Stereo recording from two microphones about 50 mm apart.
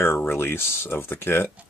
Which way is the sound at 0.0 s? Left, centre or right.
Left.